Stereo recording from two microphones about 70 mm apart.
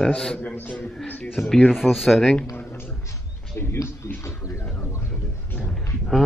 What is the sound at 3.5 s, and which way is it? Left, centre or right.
Speech, left.